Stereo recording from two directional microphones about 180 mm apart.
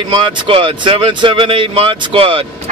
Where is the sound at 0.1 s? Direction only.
25° right (ahead or behind).